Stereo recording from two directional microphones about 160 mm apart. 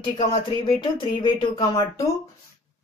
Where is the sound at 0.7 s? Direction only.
30° left (ahead or behind).